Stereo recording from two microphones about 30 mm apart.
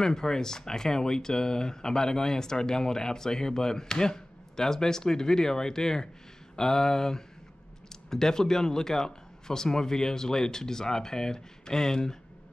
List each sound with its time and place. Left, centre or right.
0.0 s speech: left